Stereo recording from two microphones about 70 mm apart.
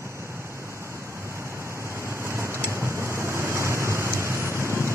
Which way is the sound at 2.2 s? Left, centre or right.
Right.